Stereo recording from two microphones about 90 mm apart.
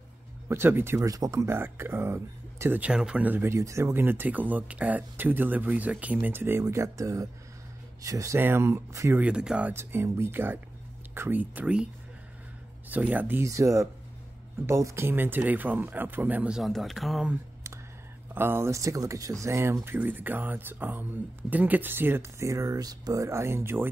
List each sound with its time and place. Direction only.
0.5 s speech: 25° right (ahead or behind)
1.0 s speech: 40° right (ahead or behind)
2.8 s speech: 10° right (ahead or behind)
6.6 s speech: 35° right (ahead or behind)
8.4 s speech: 25° right (ahead or behind)
9.2 s speech: 10° right (ahead or behind)
9.7 s speech: 25° right (ahead or behind)
12.9 s speech: 20° right (ahead or behind)
13.4 s speech: 35° right (ahead or behind); by 16.5 s 20° right (ahead or behind)
16.5 s speech: centre (ahead or behind)
18.3 s speech: 25° right (ahead or behind)